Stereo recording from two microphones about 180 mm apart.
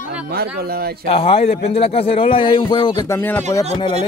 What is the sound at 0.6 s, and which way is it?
Speech, 60° right (ahead or behind).